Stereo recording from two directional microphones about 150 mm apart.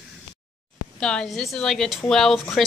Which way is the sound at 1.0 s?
5° left (ahead or behind).